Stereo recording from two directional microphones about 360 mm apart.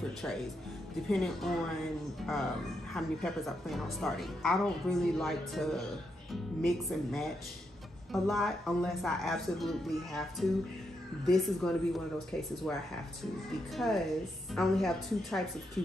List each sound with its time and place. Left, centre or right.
1.0 s a woman's voice: centre
2.9 s a woman's voice: centre